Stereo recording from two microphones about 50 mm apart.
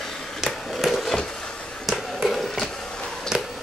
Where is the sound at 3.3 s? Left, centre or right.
Centre.